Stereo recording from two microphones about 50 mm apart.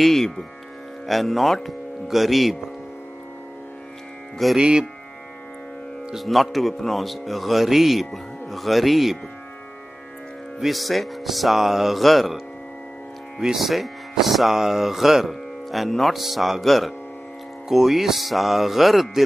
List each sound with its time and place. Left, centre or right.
0.0 s speech: centre
4.6 s speech: centre
6.1 s speech: centre
10.6 s speech: centre
13.4 s speech: centre